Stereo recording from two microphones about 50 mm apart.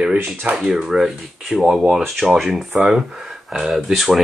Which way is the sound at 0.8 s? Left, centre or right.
Centre.